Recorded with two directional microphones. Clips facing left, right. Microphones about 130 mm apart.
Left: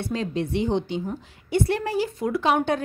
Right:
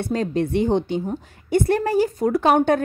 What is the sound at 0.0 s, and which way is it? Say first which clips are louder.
A woman's voice: right 5 dB; 45° right (ahead or behind).